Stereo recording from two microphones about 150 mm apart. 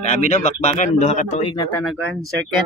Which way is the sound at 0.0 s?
50° left (ahead or behind).